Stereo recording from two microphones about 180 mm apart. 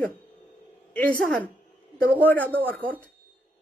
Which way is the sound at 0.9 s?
10° left (ahead or behind).